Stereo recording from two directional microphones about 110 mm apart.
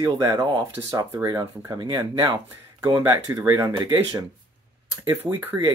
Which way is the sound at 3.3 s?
35° right (ahead or behind).